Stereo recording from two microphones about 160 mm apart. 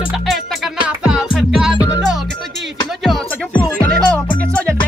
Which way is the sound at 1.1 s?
5° right (ahead or behind).